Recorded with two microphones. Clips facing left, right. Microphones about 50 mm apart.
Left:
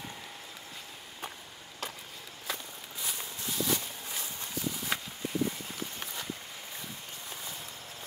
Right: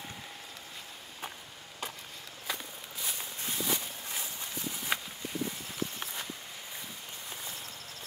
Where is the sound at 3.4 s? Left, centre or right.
Right.